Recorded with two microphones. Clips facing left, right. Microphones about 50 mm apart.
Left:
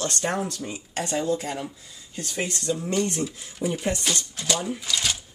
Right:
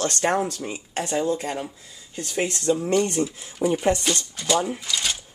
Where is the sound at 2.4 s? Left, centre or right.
Right.